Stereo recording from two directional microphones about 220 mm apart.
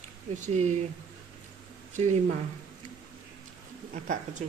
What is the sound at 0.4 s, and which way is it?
Speech, 30° right (ahead or behind).